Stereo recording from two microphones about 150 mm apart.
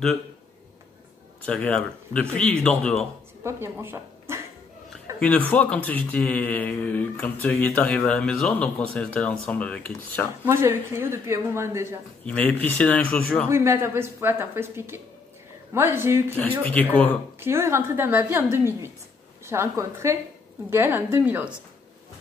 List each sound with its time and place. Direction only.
1.4 s speech: 10° left (ahead or behind)
3.4 s speech: 15° right (ahead or behind)
5.1 s a sound: 20° right (ahead or behind)
5.5 s speech: 10° left (ahead or behind)
10.4 s speech: 15° right (ahead or behind)
12.3 s speech: 10° left (ahead or behind)
13.5 s speech: 15° right (ahead or behind)
16.6 s speech: 10° left (ahead or behind)
17.4 s speech: 15° right (ahead or behind)